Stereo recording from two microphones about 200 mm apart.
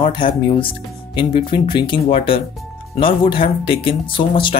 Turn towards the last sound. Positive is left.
turn(degrees=25)  # may be behind; listen again after turning